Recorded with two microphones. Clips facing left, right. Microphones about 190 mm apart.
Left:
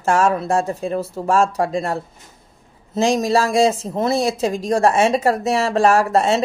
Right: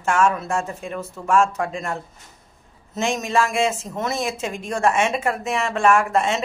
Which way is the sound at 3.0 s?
35° left (ahead or behind).